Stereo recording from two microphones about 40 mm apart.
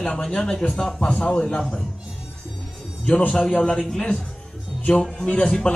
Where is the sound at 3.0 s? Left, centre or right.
Left.